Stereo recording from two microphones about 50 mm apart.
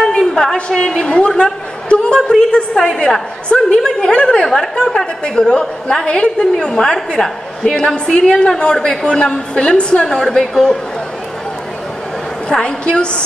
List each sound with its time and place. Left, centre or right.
0.1 s a woman's voice: centre
10.0 s a woman's voice: centre
12.4 s a woman's voice: centre